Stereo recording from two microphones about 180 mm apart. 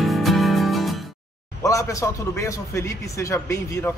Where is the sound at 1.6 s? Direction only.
15° left (ahead or behind).